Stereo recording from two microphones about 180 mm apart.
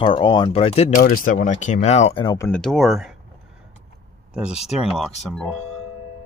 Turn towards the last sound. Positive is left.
turn(degrees=0)  # may be behind; listen again after turning